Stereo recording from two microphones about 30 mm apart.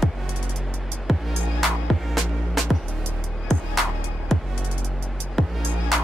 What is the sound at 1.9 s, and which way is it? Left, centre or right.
Music, centre.